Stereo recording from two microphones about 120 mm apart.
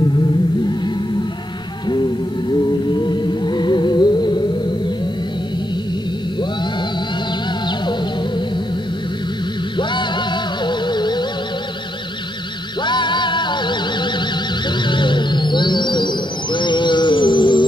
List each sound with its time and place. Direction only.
2.9 s music: 40° left (ahead or behind)
9.8 s music: 40° left (ahead or behind)
12.8 s music: 40° left (ahead or behind)